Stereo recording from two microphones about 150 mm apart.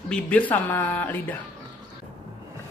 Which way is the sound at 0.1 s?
10° left (ahead or behind).